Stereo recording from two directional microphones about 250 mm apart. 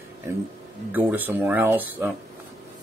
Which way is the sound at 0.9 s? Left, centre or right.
Centre.